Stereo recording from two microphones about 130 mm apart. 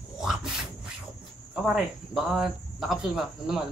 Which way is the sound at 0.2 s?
5° right (ahead or behind).